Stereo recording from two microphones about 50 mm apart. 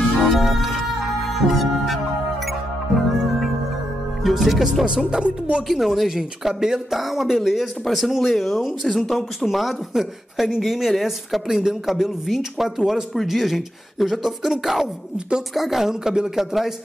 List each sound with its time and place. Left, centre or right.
0.2 s music: centre
1.3 s speech: centre
4.2 s speech: centre
4.8 s speech: centre
5.7 s speech: centre
15.1 s a woman's voice: centre
15.5 s speech: centre